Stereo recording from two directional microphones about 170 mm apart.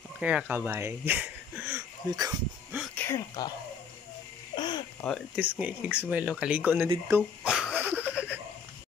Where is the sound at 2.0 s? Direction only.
20° right (ahead or behind).